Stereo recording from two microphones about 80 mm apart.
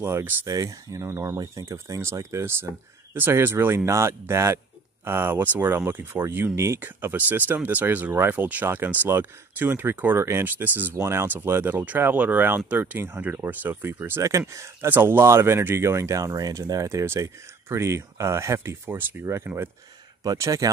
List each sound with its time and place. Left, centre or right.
0.0 s speech: right
0.5 s speech: right
14.9 s speech: right
17.0 s speech: right